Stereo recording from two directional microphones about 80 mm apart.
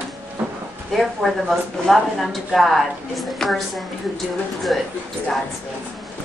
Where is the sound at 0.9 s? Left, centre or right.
Centre.